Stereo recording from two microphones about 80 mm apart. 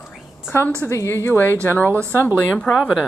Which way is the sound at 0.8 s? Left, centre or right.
Left.